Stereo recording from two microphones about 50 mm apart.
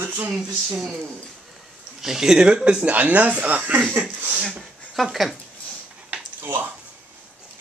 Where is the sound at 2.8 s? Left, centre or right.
Right.